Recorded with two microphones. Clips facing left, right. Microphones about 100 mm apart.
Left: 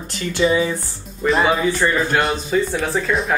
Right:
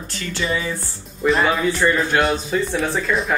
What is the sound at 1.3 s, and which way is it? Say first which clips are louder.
Speech: left 1 dB; centre (ahead or behind).